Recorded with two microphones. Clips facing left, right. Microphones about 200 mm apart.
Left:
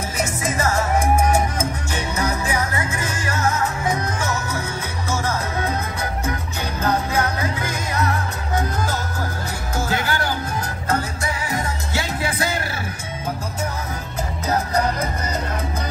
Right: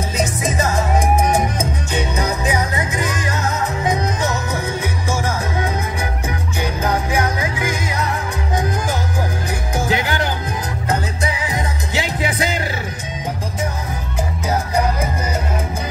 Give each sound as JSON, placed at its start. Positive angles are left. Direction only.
{"t": 0.2, "sound": "music", "side_deg": -15}
{"t": 9.8, "sound": "music", "side_deg": -15}